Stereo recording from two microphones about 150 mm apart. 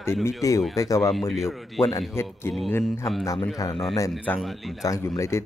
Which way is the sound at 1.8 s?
40° left (ahead or behind).